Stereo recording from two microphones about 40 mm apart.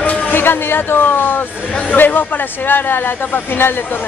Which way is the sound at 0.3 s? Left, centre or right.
Left.